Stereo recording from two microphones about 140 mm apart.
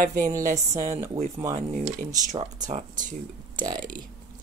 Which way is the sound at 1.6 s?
60° right (ahead or behind).